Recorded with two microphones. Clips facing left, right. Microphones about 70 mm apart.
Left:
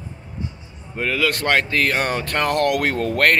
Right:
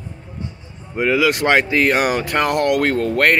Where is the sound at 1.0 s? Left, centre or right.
Centre.